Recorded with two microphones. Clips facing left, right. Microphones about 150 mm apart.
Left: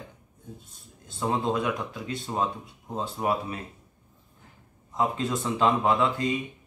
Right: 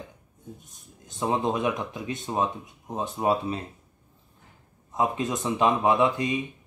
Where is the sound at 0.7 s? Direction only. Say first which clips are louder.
Even; 20° right (ahead or behind).